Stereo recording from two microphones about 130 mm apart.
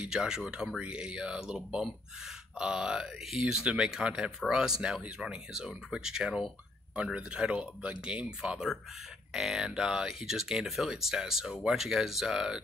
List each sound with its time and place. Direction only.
0.0 s speech: 5° right (ahead or behind)